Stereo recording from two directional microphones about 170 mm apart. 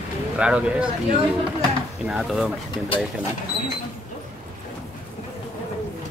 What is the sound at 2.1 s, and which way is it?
Speech, centre (ahead or behind).